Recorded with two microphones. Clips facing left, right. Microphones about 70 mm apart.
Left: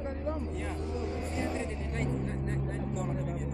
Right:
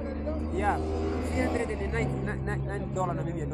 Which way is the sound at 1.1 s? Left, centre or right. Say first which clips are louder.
Right 6 dB; right.